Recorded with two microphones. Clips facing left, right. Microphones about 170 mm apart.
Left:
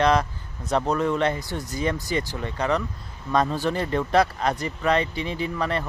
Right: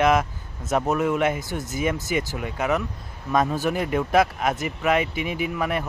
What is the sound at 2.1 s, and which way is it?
Speech, 10° right (ahead or behind).